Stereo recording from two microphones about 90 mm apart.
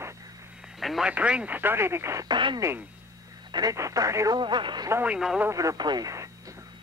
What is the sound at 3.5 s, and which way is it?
Speech, 50° right (ahead or behind).